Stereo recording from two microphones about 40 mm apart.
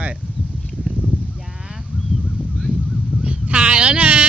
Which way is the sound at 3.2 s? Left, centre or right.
Right.